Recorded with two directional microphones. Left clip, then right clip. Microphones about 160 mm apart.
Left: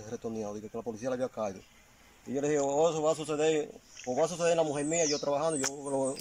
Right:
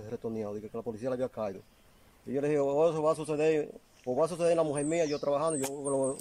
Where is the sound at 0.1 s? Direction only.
Centre (ahead or behind).